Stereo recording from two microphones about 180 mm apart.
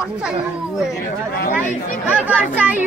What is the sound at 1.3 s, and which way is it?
Speech, 55° left (ahead or behind).